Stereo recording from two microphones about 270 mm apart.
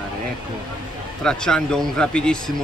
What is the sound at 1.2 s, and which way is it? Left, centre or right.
Speech, centre.